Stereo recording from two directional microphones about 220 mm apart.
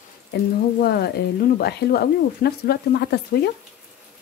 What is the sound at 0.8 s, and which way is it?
Speech, 45° left (ahead or behind).